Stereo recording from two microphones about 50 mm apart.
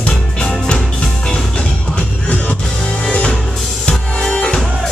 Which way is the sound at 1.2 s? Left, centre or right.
Centre.